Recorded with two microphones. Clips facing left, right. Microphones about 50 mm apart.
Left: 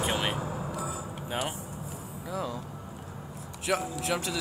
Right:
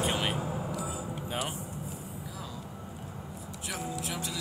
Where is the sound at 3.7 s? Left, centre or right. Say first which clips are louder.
Left 8 dB; left.